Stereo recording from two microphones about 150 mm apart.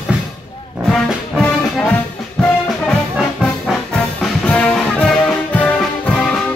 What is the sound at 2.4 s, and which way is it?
Music, 5° left (ahead or behind).